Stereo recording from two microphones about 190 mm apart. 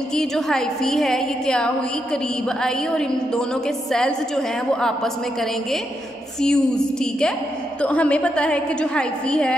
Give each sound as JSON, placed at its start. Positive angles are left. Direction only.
{"t": 0.1, "sound": "a woman's voice", "side_deg": 5}